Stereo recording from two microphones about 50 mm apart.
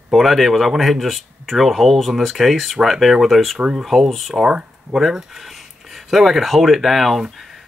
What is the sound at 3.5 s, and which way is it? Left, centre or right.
Speech, centre.